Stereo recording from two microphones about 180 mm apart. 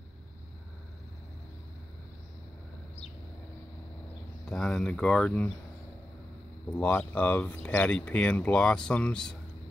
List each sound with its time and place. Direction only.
4.5 s speech: 5° left (ahead or behind)
6.7 s speech: 10° left (ahead or behind)